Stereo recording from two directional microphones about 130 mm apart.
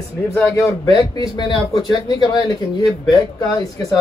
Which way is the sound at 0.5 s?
25° left (ahead or behind).